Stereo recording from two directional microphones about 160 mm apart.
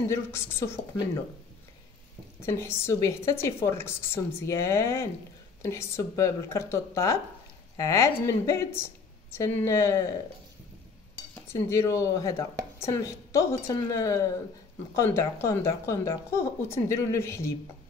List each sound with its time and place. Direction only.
0.1 s a woman's voice: 15° left (ahead or behind)
2.4 s a woman's voice: 15° left (ahead or behind)
11.4 s a woman's voice: 20° left (ahead or behind)